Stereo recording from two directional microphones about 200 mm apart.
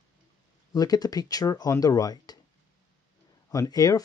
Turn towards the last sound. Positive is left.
turn(degrees=20)  # may be behind; listen again after turning